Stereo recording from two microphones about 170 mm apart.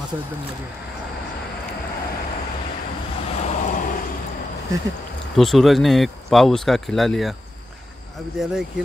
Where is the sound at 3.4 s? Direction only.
40° left (ahead or behind).